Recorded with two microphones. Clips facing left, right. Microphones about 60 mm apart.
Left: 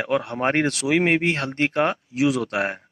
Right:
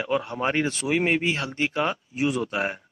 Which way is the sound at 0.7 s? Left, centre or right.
Left.